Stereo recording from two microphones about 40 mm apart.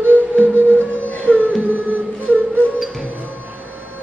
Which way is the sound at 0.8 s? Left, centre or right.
Left.